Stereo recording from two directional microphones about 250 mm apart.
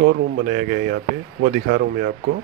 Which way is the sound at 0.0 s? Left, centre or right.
Right.